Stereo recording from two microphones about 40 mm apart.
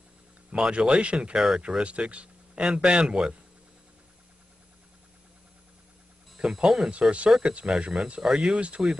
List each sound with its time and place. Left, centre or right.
0.5 s speech: right
1.3 s speech: centre
1.8 s speech: right
6.3 s a sound: centre
6.6 s speech: centre
6.9 s speech: right; by 8.5 s centre
8.5 s speech: right